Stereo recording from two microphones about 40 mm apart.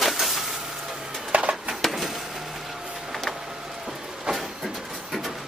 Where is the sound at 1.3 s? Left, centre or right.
Right.